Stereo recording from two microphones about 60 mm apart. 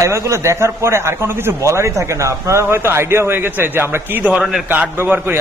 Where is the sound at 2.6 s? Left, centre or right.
Right.